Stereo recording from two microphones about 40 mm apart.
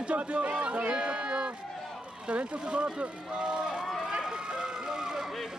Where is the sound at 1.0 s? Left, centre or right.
Right.